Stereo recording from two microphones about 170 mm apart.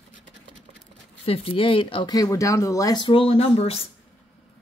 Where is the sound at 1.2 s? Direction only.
35° left (ahead or behind).